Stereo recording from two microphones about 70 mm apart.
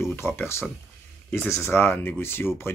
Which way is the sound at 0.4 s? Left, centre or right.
Left.